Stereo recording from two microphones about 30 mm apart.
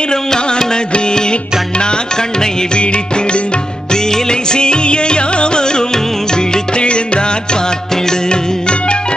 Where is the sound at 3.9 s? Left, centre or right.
Left.